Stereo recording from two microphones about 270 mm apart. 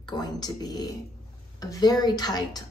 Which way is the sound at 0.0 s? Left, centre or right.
Centre.